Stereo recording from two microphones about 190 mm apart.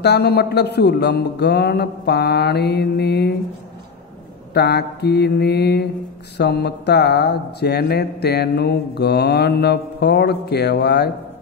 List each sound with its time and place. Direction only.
0.0 s speech: 60° left (ahead or behind)
4.6 s speech: 60° left (ahead or behind)